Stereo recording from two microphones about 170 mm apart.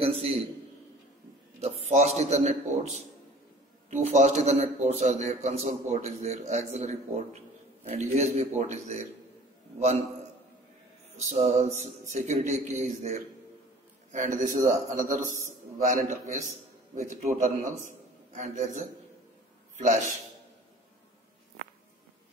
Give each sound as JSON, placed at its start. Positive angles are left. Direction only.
{"t": 0.0, "sound": "a man's voice", "side_deg": -35}
{"t": 1.6, "sound": "a man's voice", "side_deg": -40}
{"t": 11.2, "sound": "a man's voice", "side_deg": -40}